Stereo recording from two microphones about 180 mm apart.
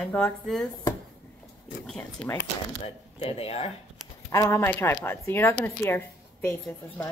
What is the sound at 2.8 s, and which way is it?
Speech, 35° left (ahead or behind).